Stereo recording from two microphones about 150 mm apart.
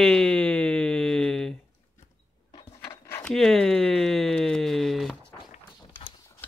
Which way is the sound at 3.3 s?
5° left (ahead or behind).